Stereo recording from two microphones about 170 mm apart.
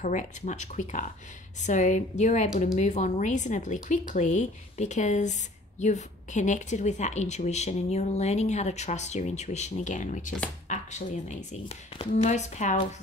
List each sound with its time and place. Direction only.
0.0 s speech: 45° left (ahead or behind)